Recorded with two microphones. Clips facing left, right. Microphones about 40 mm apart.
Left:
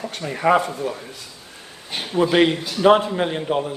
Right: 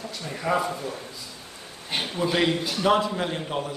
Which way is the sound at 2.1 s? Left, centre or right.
Left.